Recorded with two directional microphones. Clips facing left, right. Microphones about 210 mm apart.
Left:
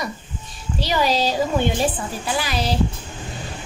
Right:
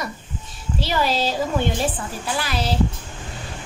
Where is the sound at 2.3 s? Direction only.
Centre (ahead or behind).